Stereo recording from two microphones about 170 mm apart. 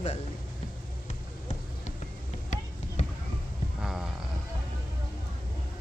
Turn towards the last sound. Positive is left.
turn(degrees=-5)  # may be behind; listen again after turning